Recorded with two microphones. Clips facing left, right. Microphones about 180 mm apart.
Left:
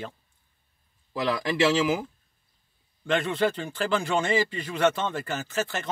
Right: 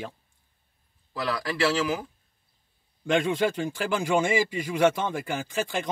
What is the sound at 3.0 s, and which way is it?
A man's voice, 10° right (ahead or behind).